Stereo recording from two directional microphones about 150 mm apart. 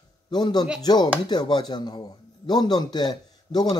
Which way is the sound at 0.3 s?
25° left (ahead or behind).